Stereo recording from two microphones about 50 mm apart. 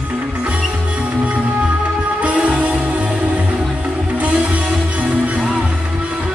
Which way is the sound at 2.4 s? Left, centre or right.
Centre.